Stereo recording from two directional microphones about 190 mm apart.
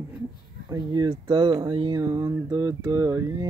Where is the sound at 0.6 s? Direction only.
20° right (ahead or behind).